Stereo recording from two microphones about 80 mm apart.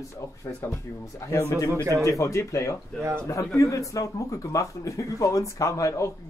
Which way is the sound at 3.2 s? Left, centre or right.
Left.